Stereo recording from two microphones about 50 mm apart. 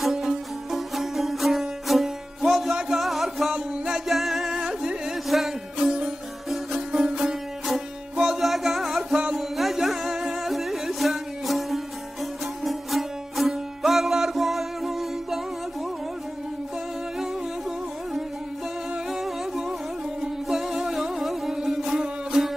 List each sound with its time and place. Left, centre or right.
0.0 s music: centre
3.5 s music: centre
4.1 s singing: centre
4.6 s music: centre
8.2 s music: centre
17.2 s music: centre